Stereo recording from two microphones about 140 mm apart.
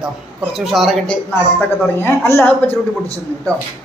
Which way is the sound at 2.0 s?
15° left (ahead or behind).